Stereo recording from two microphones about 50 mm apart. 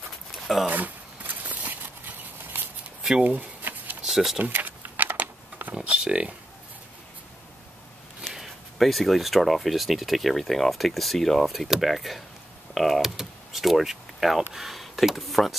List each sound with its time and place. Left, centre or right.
0.7 s horse: right
3.0 s a sound: centre
3.3 s shuffling cards: right
4.0 s a sound: centre
4.4 s speech: right
4.6 s computer keyboard: right
5.9 s speech: centre
8.3 s speech: centre
12.7 s door: centre
14.5 s speech: centre